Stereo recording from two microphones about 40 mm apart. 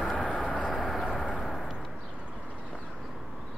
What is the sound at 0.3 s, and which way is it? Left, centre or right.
Vehicle, left.